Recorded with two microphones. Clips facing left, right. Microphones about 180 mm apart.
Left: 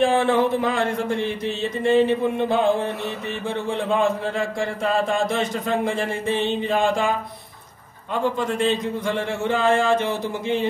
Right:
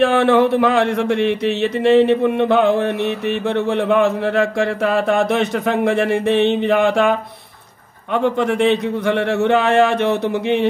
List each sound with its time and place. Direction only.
0.0 s speech: 70° right (ahead or behind)